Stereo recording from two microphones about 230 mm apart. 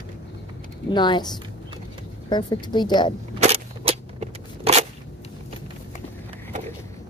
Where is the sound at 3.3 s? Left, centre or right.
Right.